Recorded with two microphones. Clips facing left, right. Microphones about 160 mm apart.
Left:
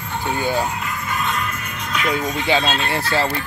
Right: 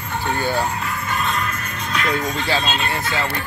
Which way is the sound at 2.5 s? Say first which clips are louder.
Left 2 dB; centre (ahead or behind).